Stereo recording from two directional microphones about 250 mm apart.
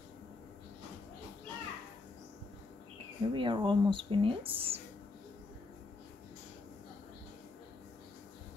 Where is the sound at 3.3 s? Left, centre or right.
Centre.